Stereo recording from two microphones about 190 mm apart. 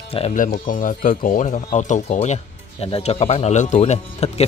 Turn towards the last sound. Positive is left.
turn(degrees=35)  # may be behind; listen again after turning